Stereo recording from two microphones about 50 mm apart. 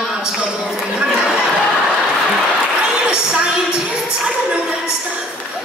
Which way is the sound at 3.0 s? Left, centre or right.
Centre.